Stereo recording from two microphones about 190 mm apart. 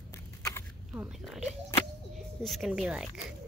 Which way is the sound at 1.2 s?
Centre (ahead or behind).